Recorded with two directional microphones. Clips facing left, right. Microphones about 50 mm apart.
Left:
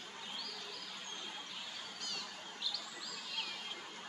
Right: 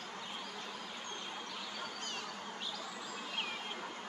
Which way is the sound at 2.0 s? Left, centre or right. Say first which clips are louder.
Right 4 dB; right.